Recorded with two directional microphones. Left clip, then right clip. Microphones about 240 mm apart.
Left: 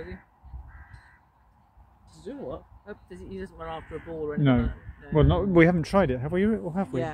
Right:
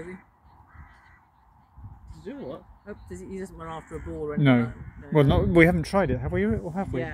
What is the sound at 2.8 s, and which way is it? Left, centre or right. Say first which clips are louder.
Speech: right 2 dB; right.